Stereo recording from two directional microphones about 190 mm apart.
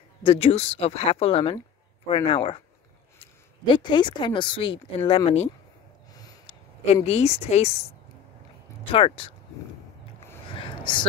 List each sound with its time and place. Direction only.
0.2 s speech: 30° left (ahead or behind)
6.8 s speech: 35° left (ahead or behind)
8.9 s speech: 30° left (ahead or behind)
10.5 s a sound: 25° left (ahead or behind)